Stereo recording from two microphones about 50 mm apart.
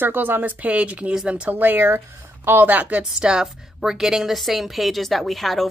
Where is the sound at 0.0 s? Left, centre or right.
Right.